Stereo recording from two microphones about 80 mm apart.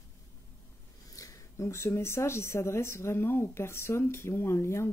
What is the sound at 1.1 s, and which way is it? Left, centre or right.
Speech, left.